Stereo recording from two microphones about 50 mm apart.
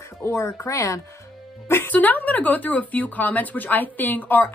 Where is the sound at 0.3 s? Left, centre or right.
Left.